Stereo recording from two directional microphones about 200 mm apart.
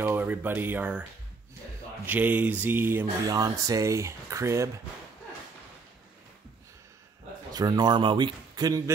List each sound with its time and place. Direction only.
0.0 s speech: 10° right (ahead or behind)
2.0 s speech: 10° right (ahead or behind)
7.5 s speech: 20° right (ahead or behind)